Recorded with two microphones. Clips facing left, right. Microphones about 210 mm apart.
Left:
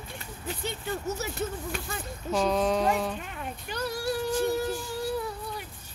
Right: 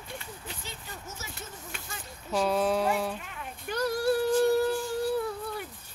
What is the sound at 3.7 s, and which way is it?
Child singing, 55° right (ahead or behind).